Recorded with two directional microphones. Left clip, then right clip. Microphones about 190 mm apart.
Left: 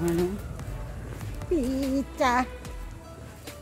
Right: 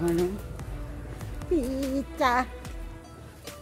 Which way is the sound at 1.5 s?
15° right (ahead or behind).